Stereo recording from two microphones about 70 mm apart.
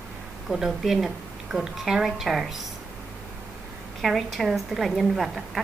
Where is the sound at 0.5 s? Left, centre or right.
Centre.